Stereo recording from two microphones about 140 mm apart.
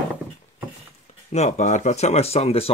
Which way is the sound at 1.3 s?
55° left (ahead or behind).